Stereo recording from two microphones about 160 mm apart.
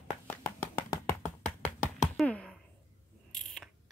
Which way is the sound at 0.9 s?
10° left (ahead or behind).